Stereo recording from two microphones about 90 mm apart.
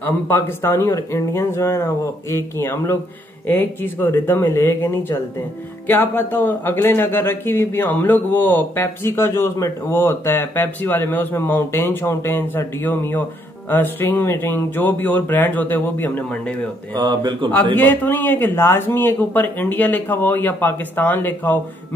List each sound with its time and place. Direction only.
0.0 s speech: 25° left (ahead or behind)
16.9 s speech: 55° right (ahead or behind)
17.7 s speech: 20° left (ahead or behind)